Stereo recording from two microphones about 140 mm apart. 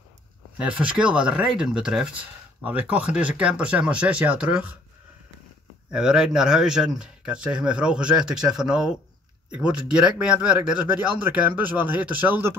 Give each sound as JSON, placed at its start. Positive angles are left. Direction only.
{"t": 0.6, "sound": "speech", "side_deg": -10}
{"t": 5.9, "sound": "speech", "side_deg": -5}